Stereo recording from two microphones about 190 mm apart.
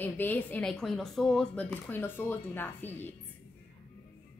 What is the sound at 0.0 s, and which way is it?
Speech, 10° left (ahead or behind).